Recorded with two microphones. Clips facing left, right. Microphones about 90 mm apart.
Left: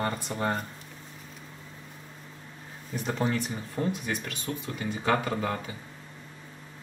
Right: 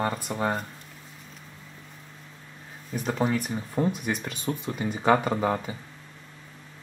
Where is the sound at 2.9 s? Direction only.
5° right (ahead or behind).